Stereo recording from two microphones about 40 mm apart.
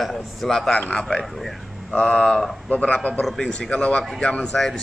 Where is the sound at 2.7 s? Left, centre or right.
Left.